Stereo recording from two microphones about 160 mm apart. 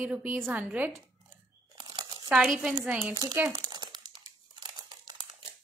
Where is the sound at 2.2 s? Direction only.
5° right (ahead or behind).